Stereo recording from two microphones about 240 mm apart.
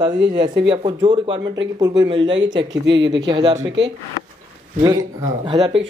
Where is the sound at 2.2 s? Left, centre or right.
Right.